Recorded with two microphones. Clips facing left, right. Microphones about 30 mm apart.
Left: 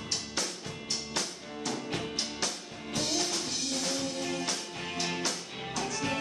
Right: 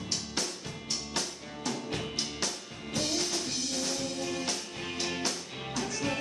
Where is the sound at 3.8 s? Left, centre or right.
Centre.